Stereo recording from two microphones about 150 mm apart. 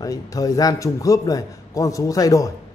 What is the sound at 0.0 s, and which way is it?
Speech, 25° left (ahead or behind).